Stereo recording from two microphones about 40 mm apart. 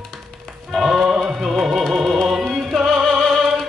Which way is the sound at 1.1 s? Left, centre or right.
Centre.